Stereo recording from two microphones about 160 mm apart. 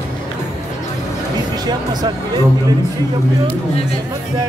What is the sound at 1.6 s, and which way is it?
Speech, 25° right (ahead or behind).